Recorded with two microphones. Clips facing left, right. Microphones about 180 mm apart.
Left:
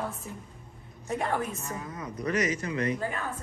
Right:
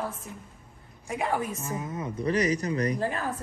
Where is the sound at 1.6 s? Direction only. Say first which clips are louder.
Right 4 dB; 20° right (ahead or behind).